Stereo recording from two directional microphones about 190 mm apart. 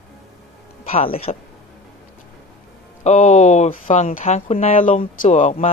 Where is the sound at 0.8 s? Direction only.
30° left (ahead or behind).